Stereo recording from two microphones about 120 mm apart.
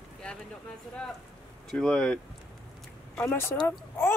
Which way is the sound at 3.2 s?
20° left (ahead or behind).